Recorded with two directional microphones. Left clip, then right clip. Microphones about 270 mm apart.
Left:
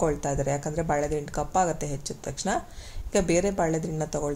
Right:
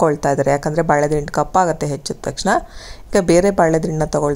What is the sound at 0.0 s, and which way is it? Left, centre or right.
A woman's voice, right.